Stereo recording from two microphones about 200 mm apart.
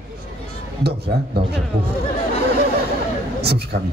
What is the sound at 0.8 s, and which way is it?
Speech, 55° right (ahead or behind).